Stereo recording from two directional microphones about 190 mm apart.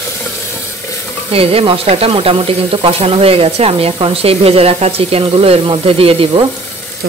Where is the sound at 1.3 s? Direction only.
30° right (ahead or behind).